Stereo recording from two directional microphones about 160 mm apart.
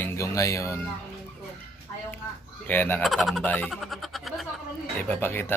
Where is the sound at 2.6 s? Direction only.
10° left (ahead or behind).